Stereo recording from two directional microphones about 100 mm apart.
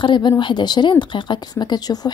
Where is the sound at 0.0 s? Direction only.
50° left (ahead or behind).